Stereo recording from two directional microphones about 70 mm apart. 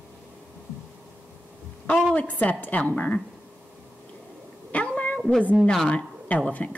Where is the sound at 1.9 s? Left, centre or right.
Centre.